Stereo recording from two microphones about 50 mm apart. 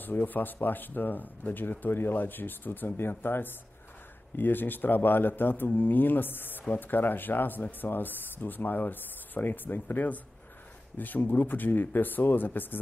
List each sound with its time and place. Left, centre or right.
0.0 s speech: left